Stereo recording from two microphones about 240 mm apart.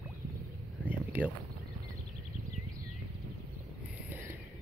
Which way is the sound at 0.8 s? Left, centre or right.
Centre.